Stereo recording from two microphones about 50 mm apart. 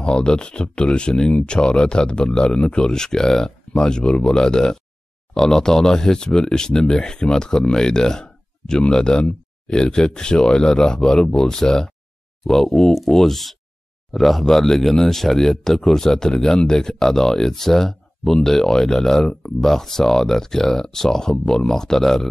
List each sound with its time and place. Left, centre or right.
0.0 s speech: centre